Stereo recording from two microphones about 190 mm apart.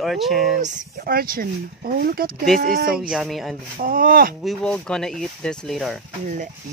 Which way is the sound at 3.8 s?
50° right (ahead or behind).